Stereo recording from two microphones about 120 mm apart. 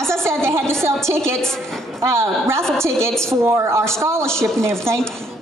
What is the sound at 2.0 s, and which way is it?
A woman's voice, 20° right (ahead or behind).